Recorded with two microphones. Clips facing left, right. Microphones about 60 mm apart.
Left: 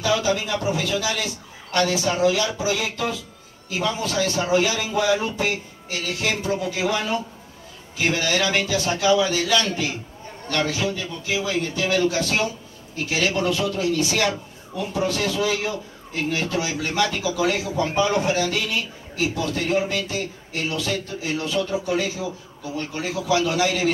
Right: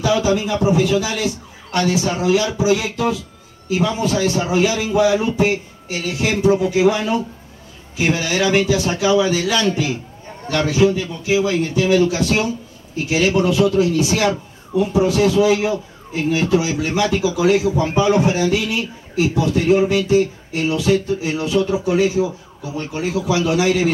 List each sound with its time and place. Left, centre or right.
0.0 s a man's voice: right